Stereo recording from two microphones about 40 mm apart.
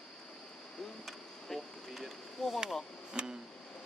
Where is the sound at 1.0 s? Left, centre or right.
Centre.